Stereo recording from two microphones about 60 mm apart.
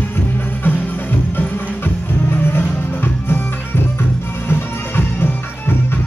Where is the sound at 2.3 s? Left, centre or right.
Left.